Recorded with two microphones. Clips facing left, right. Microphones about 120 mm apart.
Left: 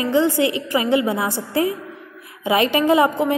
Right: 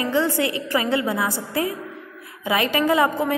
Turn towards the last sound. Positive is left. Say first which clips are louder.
# left 3 dB
turn(degrees=20)  # may be behind; listen again after turning